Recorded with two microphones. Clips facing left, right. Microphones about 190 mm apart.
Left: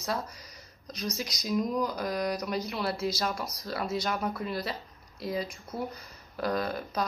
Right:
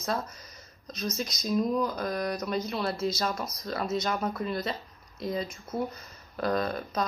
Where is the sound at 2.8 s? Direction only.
Centre (ahead or behind).